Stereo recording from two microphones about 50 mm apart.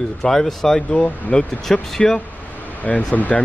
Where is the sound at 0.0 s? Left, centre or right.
Centre.